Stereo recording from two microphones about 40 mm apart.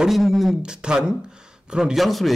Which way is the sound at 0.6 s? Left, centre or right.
Right.